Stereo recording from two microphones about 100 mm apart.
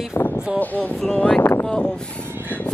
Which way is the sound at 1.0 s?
5° left (ahead or behind).